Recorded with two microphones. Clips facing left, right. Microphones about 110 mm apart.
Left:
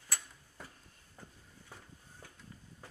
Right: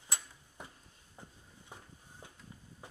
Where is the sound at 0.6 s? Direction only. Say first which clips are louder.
Right 1 dB; 20° right (ahead or behind).